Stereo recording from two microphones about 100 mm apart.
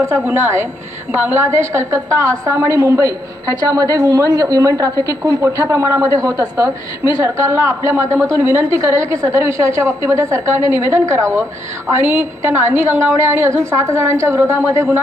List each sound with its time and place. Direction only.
0.2 s a woman's voice: 25° right (ahead or behind)